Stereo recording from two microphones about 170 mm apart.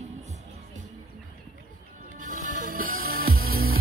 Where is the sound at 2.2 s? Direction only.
55° right (ahead or behind).